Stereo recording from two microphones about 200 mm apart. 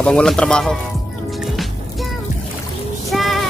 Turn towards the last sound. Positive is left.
turn(degrees=0)  # may be behind; listen again after turning